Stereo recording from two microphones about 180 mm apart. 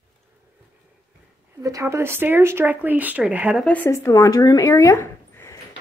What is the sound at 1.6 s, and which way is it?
Speech, 15° right (ahead or behind).